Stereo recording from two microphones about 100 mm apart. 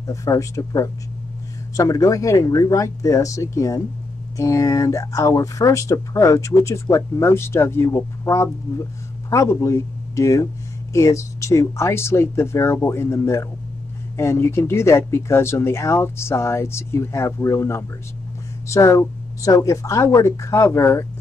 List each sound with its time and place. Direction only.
0.0 s speech: 35° left (ahead or behind)